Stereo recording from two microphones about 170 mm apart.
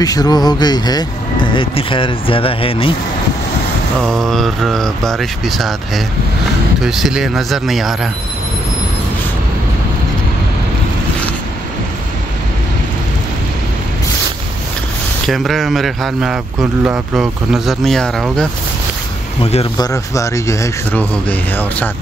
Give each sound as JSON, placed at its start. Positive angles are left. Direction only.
{"t": 0.0, "sound": "speech", "side_deg": 20}
{"t": 4.0, "sound": "speech", "side_deg": 0}
{"t": 15.2, "sound": "speech", "side_deg": 0}
{"t": 19.4, "sound": "speech", "side_deg": 35}
{"t": 19.8, "sound": "speech", "side_deg": 20}